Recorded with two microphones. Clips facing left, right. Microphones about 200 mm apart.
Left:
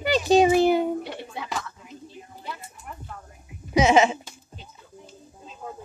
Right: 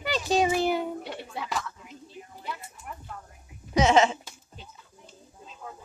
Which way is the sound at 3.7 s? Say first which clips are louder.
Left 3 dB; 10° left (ahead or behind).